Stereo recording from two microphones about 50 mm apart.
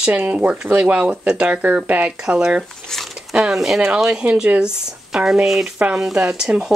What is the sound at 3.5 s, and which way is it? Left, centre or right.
Speech, centre.